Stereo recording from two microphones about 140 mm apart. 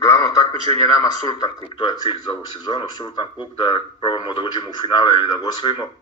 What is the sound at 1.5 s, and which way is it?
Speech, 35° left (ahead or behind).